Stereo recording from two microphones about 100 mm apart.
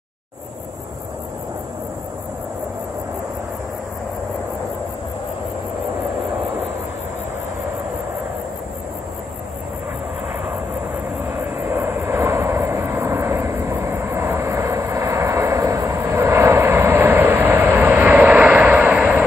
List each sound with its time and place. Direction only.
11.2 s vehicle: 20° right (ahead or behind)